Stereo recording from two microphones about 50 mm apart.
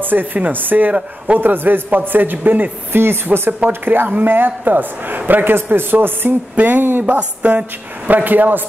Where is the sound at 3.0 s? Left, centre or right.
Right.